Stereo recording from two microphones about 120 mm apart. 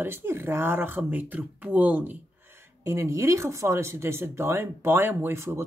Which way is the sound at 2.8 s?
25° right (ahead or behind).